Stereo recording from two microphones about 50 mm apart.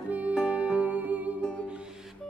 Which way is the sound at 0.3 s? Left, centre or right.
Centre.